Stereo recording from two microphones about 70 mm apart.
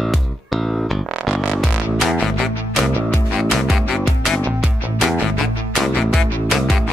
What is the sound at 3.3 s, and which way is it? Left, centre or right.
Music, centre.